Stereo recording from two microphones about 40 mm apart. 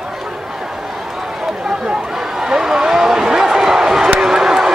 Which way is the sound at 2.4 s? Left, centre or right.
Centre.